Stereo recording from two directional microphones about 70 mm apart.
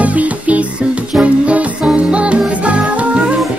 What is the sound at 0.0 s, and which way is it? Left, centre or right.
Music, right.